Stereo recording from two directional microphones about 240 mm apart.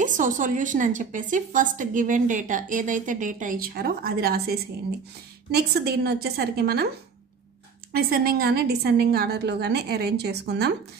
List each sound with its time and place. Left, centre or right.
0.0 s a woman's voice: right
7.9 s a woman's voice: right